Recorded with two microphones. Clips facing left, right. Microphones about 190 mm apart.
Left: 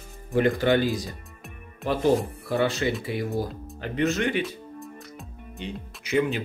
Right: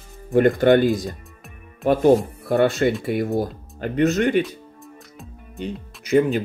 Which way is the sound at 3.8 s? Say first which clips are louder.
Right 6 dB; 45° right (ahead or behind).